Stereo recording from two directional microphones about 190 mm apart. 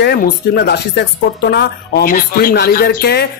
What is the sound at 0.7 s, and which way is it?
Speech, 60° left (ahead or behind).